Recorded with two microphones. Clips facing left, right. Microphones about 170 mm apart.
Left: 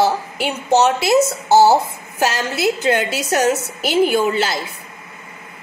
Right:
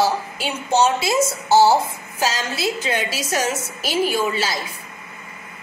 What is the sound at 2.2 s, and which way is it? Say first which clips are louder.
A woman's voice: left 4 dB; 60° left (ahead or behind).